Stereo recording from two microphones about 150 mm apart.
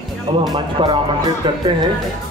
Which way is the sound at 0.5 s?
30° right (ahead or behind).